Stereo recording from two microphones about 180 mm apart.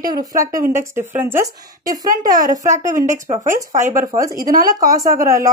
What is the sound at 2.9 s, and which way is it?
Speech, 45° right (ahead or behind).